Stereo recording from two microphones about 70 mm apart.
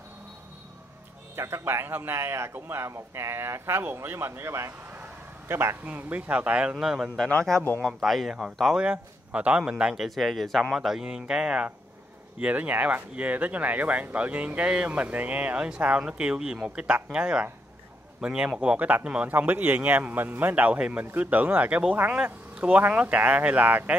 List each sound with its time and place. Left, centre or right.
1.3 s a man's voice: right
5.9 s speech: right
6.8 s a man's voice: centre
7.5 s a man's voice: centre
8.7 s a man's voice: centre
10.0 s a man's voice: centre; by 24.0 s right